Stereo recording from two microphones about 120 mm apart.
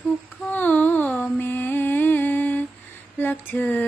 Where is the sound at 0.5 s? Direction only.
15° left (ahead or behind).